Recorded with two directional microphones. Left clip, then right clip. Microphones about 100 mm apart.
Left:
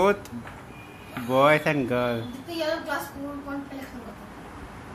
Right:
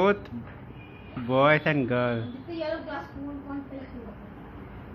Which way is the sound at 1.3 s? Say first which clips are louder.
Left 2 dB; 20° left (ahead or behind).